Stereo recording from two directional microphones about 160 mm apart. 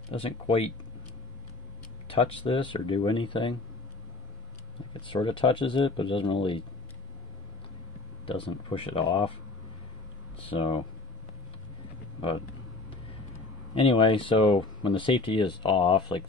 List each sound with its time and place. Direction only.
0.1 s speech: 35° left (ahead or behind)
2.0 s speech: 35° left (ahead or behind)
5.0 s speech: 30° left (ahead or behind)
8.3 s speech: 30° left (ahead or behind)
13.7 s speech: 35° left (ahead or behind)